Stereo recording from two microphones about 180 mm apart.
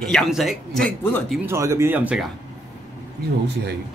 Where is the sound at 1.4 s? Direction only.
15° right (ahead or behind).